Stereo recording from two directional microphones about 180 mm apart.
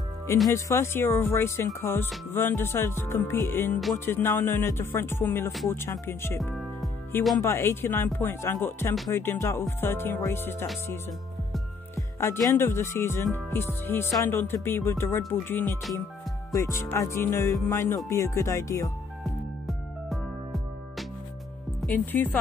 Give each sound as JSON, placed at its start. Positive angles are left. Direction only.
{"t": 0.5, "sound": "speech", "side_deg": 15}
{"t": 6.4, "sound": "music", "side_deg": 0}
{"t": 7.4, "sound": "speech", "side_deg": 15}
{"t": 11.9, "sound": "speech", "side_deg": 15}
{"t": 19.6, "sound": "music", "side_deg": 0}
{"t": 21.8, "sound": "speech", "side_deg": 10}